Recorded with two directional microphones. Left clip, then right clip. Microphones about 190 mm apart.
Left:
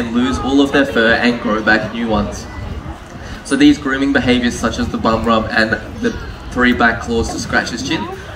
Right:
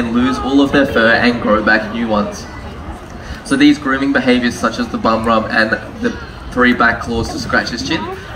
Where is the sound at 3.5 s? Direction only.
25° left (ahead or behind).